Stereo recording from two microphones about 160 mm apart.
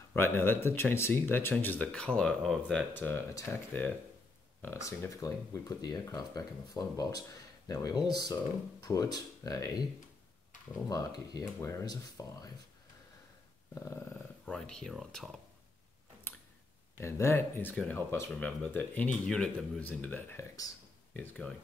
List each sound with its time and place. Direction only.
0.1 s speech: 15° left (ahead or behind)
10.9 s speech: 25° left (ahead or behind)
13.7 s speech: 15° left (ahead or behind)
17.0 s speech: 15° left (ahead or behind)